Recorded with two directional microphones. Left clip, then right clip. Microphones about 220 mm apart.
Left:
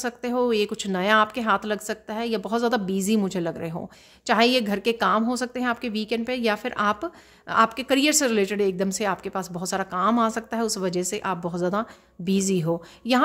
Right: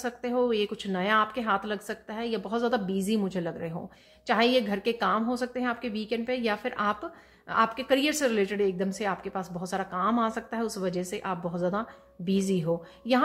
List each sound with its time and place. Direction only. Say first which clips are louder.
0.0 s speech: left 3 dB; 45° left (ahead or behind)